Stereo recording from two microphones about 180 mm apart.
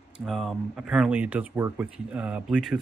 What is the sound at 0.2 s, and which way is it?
Speech, centre (ahead or behind).